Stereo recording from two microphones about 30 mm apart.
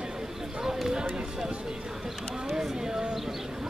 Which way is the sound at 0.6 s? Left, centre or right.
Centre.